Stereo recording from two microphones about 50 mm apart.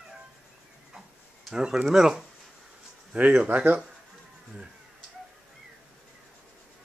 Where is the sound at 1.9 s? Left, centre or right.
Centre.